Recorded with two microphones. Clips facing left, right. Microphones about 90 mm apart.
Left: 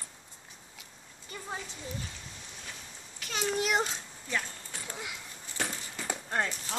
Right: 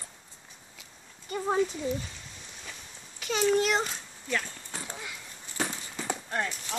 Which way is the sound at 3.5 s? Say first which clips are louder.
Right 3 dB; 10° left (ahead or behind).